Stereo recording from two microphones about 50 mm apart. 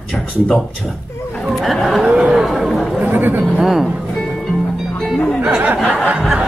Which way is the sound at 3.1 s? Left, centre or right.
Right.